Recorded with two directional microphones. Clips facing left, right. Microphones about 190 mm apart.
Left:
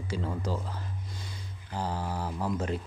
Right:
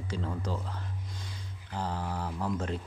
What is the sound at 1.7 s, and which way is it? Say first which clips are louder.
Speech: left 1 dB; 10° left (ahead or behind).